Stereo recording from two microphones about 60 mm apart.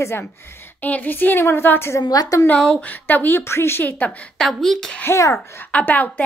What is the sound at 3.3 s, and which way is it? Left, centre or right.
Speech, left.